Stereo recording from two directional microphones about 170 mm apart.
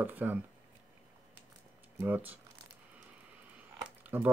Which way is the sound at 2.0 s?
10° right (ahead or behind).